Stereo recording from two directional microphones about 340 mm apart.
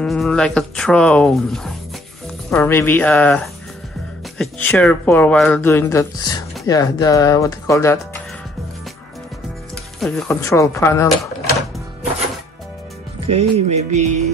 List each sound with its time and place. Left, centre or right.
0.0 s speech: centre
9.9 s speech: centre
13.3 s music: centre